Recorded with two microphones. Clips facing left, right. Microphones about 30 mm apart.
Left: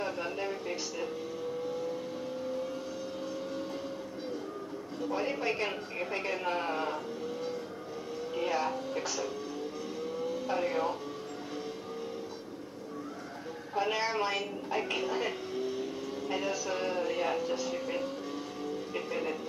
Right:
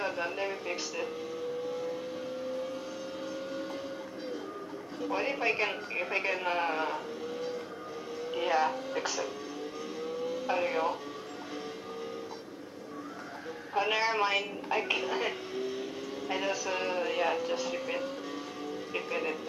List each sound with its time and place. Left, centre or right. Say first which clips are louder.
0.0 s speech: right 2 dB; centre
5.0 s speech: right 2 dB; centre
8.4 s speech: right 3 dB; centre
13.7 s a woman's voice: right 2 dB; centre